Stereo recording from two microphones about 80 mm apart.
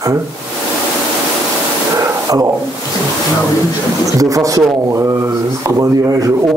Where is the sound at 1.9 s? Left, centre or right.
Right.